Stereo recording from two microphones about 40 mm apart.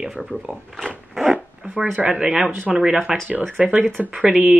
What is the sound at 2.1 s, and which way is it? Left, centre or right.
A woman's voice, right.